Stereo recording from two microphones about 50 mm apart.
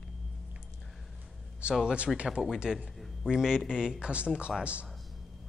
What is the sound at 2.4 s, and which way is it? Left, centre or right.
Speech, centre.